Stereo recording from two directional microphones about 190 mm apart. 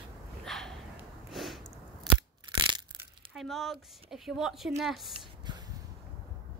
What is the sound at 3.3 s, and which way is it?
Speech, centre (ahead or behind).